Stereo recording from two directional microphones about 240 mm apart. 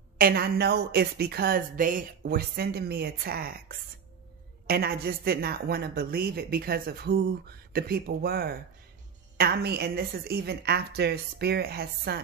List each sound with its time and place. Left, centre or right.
0.2 s a woman's voice: right